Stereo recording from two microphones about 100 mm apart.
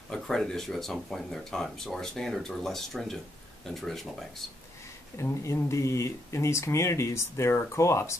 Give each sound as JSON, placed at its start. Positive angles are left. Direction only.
{"t": 0.1, "sound": "speech", "side_deg": 5}
{"t": 5.1, "sound": "speech", "side_deg": 30}